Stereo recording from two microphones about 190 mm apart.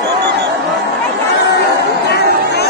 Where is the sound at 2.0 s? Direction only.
60° left (ahead or behind).